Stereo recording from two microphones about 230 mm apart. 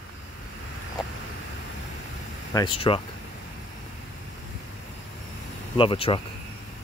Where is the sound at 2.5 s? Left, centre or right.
Left.